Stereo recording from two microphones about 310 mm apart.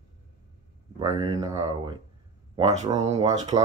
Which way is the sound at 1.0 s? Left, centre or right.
Centre.